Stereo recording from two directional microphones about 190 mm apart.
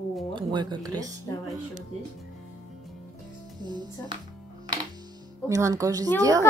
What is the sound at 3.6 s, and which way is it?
Speech, 25° right (ahead or behind).